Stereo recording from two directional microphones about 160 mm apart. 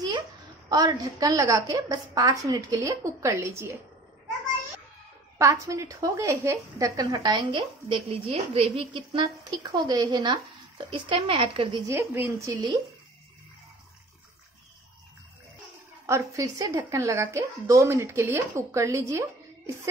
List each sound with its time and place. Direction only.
0.7 s a woman's voice: 25° right (ahead or behind)
5.4 s a woman's voice: 20° right (ahead or behind)
7.9 s a woman's voice: 35° right (ahead or behind)
11.9 s a woman's voice: 15° right (ahead or behind)
16.1 s a woman's voice: 20° right (ahead or behind)